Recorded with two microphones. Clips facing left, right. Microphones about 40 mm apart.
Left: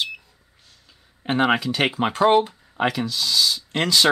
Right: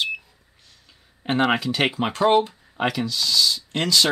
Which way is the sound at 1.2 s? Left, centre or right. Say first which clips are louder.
Left 1 dB; centre.